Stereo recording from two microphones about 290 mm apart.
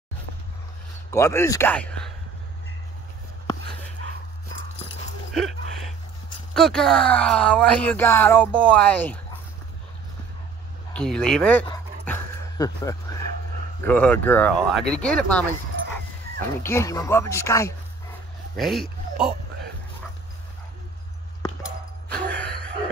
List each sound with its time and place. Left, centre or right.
1.1 s speech: centre
5.3 s a sound: centre
6.5 s speech: centre
10.9 s speech: centre
11.6 s dog: centre
13.8 s speech: centre
18.6 s speech: centre